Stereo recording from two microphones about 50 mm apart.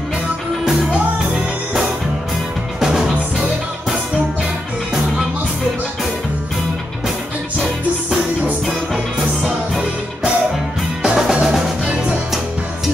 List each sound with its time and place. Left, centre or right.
1.3 s music: centre
8.9 s music: centre